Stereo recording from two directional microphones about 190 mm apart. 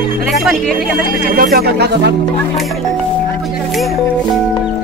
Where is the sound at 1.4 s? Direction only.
55° right (ahead or behind).